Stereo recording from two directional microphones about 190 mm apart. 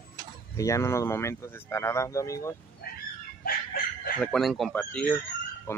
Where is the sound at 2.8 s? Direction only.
55° left (ahead or behind).